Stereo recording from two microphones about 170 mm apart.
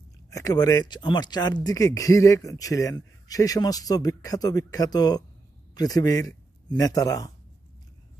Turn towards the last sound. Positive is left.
turn(degrees=20)  # may be behind; listen again after turning